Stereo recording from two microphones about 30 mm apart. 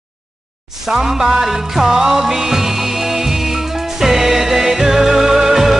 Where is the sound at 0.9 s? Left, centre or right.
Centre.